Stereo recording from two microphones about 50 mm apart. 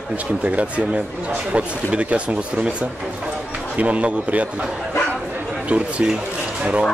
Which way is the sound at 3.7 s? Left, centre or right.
Right.